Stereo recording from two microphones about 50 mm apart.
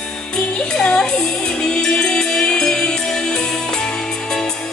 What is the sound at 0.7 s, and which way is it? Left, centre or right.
Music, centre.